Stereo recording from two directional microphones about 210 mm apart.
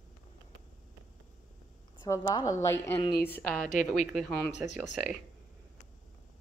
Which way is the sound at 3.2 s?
5° left (ahead or behind).